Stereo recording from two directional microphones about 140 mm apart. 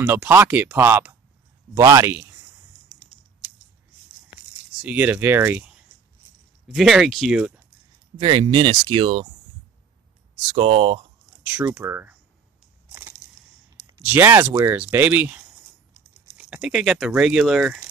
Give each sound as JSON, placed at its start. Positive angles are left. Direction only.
{"t": 0.0, "sound": "speech", "side_deg": -15}
{"t": 4.8, "sound": "speech", "side_deg": -10}
{"t": 6.7, "sound": "speech", "side_deg": 0}
{"t": 8.2, "sound": "speech", "side_deg": -35}
{"t": 10.5, "sound": "speech", "side_deg": -45}
{"t": 11.5, "sound": "speech", "side_deg": -15}
{"t": 14.0, "sound": "speech", "side_deg": -15}